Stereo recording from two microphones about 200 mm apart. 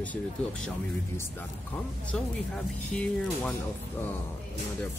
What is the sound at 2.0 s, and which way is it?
Speech, 5° left (ahead or behind).